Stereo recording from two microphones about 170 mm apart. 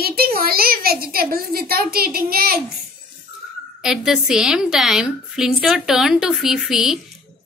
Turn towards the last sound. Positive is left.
turn(degrees=0)  # may be behind; listen again after turning